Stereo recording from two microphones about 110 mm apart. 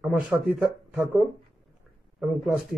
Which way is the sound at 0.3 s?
10° right (ahead or behind).